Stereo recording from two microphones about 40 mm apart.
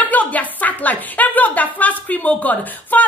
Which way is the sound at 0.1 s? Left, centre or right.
Left.